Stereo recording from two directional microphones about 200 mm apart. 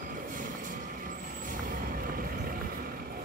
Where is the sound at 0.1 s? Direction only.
40° right (ahead or behind).